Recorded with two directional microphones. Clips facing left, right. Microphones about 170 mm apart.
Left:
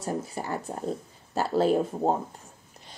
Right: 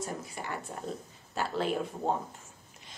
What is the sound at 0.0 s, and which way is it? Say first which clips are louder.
A woman's voice: left 6 dB; 35° left (ahead or behind).